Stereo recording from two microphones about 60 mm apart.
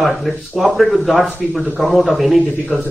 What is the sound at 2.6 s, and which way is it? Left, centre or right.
Speech, right.